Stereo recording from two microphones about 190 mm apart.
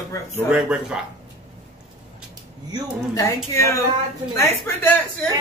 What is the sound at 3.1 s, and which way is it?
A woman's voice, 15° left (ahead or behind).